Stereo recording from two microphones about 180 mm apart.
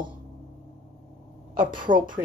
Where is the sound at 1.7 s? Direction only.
25° right (ahead or behind).